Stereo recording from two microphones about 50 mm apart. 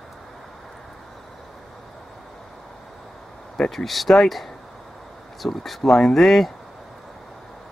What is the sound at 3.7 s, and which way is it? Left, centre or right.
Speech, centre.